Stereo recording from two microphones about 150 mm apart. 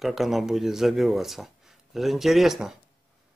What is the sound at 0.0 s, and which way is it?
Speech, centre (ahead or behind).